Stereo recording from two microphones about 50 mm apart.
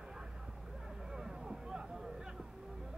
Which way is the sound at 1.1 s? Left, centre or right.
Centre.